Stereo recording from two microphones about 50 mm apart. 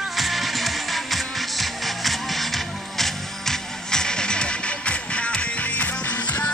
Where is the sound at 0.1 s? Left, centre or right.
Centre.